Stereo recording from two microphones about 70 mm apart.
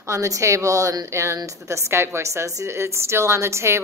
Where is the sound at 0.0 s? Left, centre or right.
Right.